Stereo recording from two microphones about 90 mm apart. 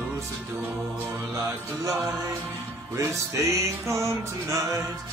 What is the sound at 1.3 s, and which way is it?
Music, 40° right (ahead or behind).